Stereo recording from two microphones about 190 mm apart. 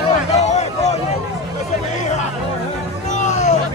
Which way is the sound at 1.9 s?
40° left (ahead or behind).